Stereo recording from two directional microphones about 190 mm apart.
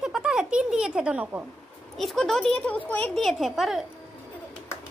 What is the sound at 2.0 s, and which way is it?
A woman's voice, centre (ahead or behind).